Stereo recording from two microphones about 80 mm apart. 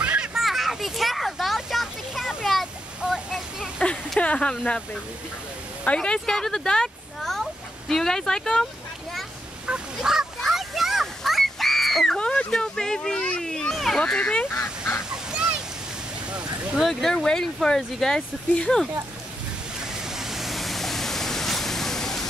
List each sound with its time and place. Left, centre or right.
0.0 s a sound: centre
0.3 s a sound: centre
3.0 s waterfall: centre
4.2 s speech: centre
5.9 s speech: centre
9.7 s fowl: centre
16.3 s a sound: centre
16.8 s speech: centre
19.8 s waterfall: centre